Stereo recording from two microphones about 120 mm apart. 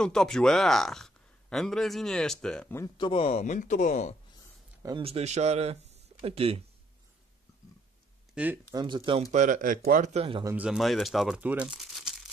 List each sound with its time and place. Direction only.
0.0 s speech: 5° left (ahead or behind)
3.0 s speech: 50° left (ahead or behind); by 4.1 s 90° left
5.0 s speech: 60° right (ahead or behind)
8.4 s speech: 10° right (ahead or behind)
8.7 s speech: 40° right (ahead or behind)
9.3 s speech: 90° right
10.5 s speech: 5° right (ahead or behind)
11.4 s crumpling: 10° right (ahead or behind)